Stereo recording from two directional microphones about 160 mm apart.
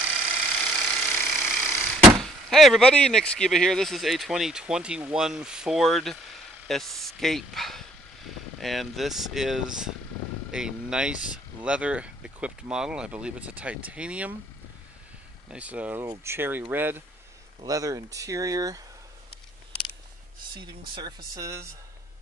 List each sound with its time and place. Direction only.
0.7 s a sound: centre (ahead or behind)
1.7 s speech: centre (ahead or behind)
15.5 s speech: 10° right (ahead or behind)
20.9 s speech: 25° right (ahead or behind)